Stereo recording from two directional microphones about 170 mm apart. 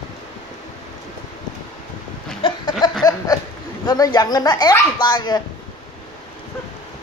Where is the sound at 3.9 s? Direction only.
25° left (ahead or behind).